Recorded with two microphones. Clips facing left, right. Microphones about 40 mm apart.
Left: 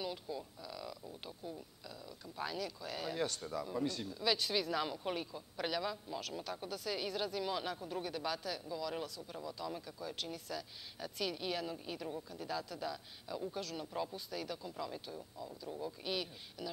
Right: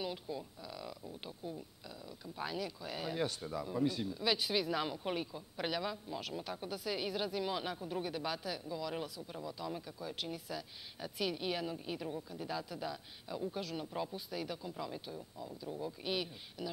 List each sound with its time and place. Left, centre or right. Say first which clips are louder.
0.0 s speech: right 1 dB; centre